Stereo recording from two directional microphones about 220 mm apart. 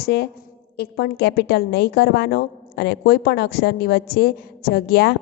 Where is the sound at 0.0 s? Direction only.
50° left (ahead or behind).